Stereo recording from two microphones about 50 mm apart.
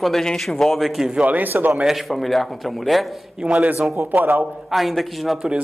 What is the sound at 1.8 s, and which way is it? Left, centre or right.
Speech, centre.